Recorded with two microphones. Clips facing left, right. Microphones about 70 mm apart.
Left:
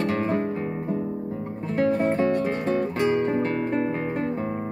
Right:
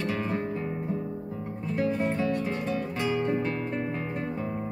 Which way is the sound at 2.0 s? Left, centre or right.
Left.